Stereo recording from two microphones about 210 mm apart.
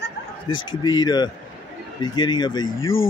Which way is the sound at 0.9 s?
20° left (ahead or behind).